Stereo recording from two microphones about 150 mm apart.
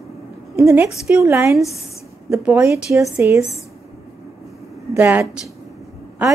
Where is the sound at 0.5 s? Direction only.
20° right (ahead or behind).